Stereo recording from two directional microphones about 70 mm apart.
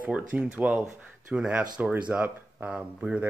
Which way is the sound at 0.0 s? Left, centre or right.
Right.